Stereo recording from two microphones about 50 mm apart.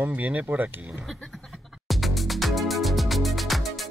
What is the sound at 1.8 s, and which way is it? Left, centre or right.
Music, centre.